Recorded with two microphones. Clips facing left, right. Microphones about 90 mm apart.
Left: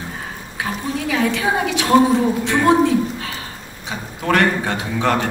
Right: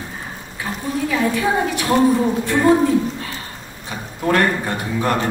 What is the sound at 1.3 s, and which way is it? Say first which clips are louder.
A woman's voice: right 1 dB; 85° left.